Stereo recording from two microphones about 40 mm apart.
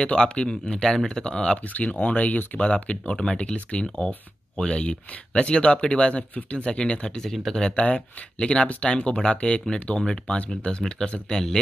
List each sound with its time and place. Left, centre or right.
0.0 s speech: left
1.6 s speech: left
2.6 s speech: left
10.5 s speech: left